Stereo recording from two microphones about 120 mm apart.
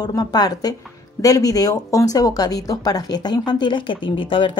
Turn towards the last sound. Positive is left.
turn(degrees=45)  # may be behind; listen again after turning